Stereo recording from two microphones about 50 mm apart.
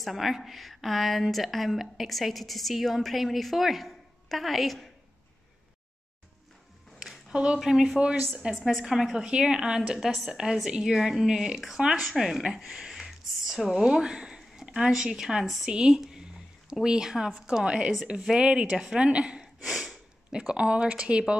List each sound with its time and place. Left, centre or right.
0.0 s a woman's voice: centre
7.0 s a sound: centre
7.5 s speech: centre
9.2 s speech: centre
12.1 s a woman's voice: centre
13.8 s speech: centre
20.2 s speech: right